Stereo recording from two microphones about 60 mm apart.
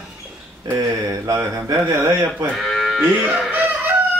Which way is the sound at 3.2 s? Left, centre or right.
Right.